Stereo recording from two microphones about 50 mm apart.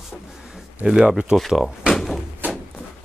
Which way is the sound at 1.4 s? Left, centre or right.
Centre.